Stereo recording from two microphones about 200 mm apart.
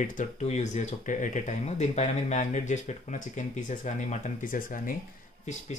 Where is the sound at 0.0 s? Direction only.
40° left (ahead or behind).